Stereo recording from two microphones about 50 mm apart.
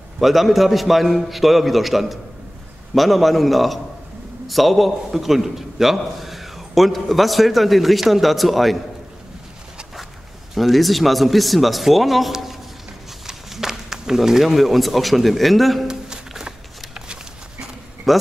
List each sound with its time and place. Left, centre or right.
0.2 s a man's voice: centre
10.5 s a man's voice: centre
15.9 s a sound: centre
18.1 s speech: centre